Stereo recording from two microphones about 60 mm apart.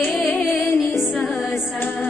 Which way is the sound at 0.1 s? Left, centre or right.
Centre.